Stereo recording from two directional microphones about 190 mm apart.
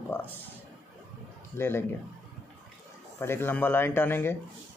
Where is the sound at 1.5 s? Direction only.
10° left (ahead or behind).